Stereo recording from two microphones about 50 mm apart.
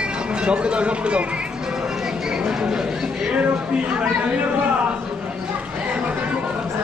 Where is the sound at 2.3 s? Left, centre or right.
Centre.